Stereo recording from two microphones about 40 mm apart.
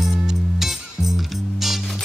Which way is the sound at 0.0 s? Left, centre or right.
Centre.